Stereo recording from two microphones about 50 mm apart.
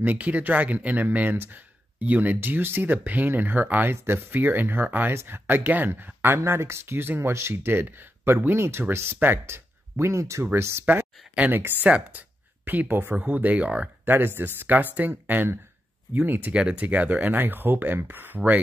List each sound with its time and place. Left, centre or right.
0.0 s speech: right
3.9 s speech: right
5.1 s speech: right
6.2 s speech: right
9.9 s speech: right
10.9 s speech: right
14.0 s speech: right
16.7 s speech: right